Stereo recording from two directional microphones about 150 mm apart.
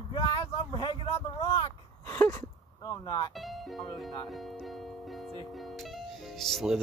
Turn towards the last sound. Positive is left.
turn(degrees=0)  # may be behind; listen again after turning